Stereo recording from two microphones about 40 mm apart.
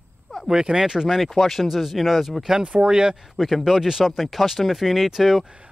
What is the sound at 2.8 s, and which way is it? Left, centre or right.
Speech, centre.